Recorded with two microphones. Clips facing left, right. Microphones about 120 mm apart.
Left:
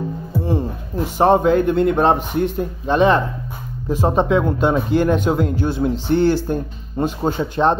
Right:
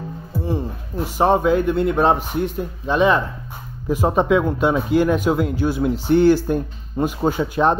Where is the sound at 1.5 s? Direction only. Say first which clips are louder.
Left 2 dB; 5° right (ahead or behind).